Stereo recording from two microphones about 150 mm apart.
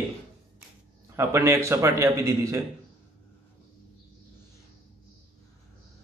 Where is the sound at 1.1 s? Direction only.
20° right (ahead or behind).